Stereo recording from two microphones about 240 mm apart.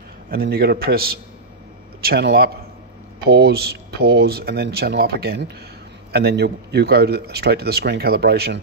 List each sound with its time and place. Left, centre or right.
0.3 s a man's voice: right